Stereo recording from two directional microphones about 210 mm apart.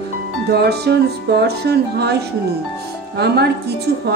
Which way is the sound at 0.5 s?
50° right (ahead or behind).